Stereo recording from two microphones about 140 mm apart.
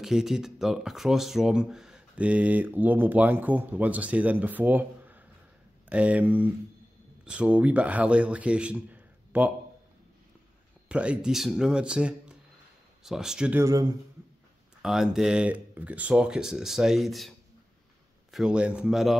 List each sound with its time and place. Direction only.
0.0 s speech: 5° right (ahead or behind)
10.9 s speech: 10° right (ahead or behind)
13.6 s speech: 25° right (ahead or behind)
14.8 s speech: 5° right (ahead or behind)